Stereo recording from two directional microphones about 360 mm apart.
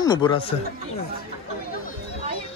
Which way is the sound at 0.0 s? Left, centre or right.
Centre.